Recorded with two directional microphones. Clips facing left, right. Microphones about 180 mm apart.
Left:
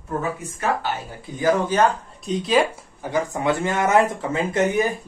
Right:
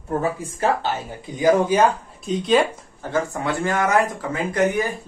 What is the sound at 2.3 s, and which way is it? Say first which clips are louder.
Speech: right 1 dB; centre (ahead or behind).